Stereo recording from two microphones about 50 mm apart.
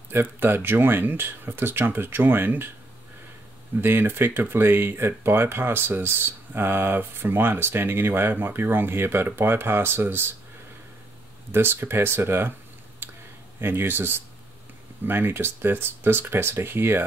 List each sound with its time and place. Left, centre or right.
0.1 s speech: right
3.8 s speech: right
11.5 s speech: right
13.0 s a sound: right
13.6 s speech: right